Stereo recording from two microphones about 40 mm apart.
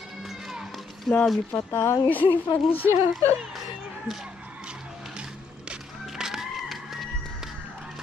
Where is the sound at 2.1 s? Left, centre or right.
Left.